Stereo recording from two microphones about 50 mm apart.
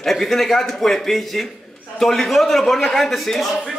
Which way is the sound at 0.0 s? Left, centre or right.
Centre.